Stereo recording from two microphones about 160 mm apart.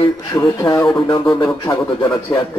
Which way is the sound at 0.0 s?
25° left (ahead or behind).